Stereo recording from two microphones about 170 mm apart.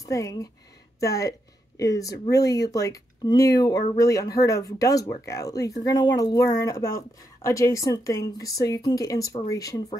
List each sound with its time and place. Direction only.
0.0 s speech: 20° left (ahead or behind)